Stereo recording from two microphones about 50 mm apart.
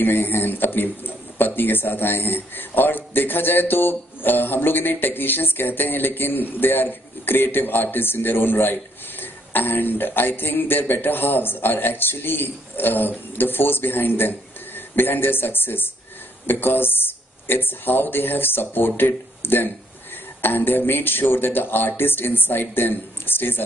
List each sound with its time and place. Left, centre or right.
0.0 s a man's voice: left